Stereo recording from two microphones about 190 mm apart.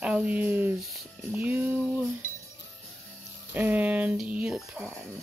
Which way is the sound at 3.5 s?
10° right (ahead or behind).